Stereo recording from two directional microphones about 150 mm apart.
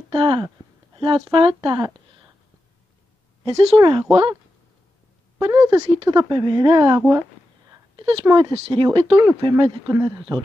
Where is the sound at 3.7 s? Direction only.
35° right (ahead or behind).